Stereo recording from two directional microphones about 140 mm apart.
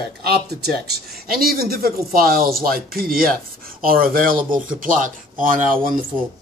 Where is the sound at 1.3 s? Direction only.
90° right.